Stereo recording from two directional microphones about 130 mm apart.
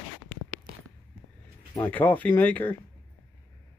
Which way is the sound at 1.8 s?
15° left (ahead or behind).